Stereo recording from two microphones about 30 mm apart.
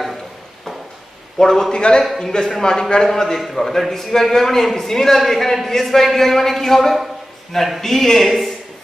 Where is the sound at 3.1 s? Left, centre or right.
Centre.